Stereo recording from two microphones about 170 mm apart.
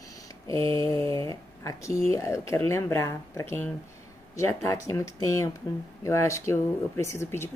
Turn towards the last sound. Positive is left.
turn(degrees=15)  # may be behind; listen again after turning